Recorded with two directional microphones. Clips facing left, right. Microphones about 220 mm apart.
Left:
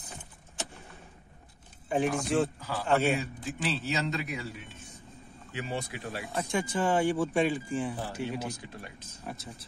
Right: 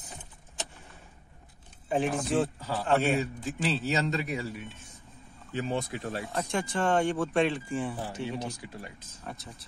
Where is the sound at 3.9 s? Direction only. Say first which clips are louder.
Right 3 dB; 40° right (ahead or behind).